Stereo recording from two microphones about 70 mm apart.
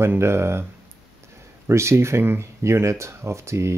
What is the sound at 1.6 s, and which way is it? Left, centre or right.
Speech, right.